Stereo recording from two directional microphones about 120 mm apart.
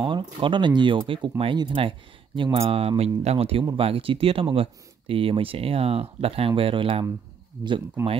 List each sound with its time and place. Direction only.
0.0 s speech: 40° right (ahead or behind)